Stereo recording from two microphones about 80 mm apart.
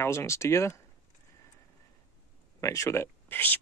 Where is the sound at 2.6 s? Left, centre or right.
Left.